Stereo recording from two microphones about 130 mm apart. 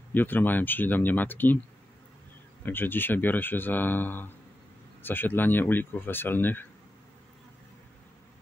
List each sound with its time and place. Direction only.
0.1 s speech: 15° left (ahead or behind)
2.6 s speech: 15° left (ahead or behind)